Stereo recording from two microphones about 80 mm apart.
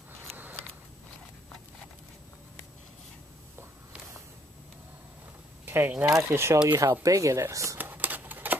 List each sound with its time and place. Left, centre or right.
5.7 s speech: right
6.1 s speech: right
7.7 s a sound: right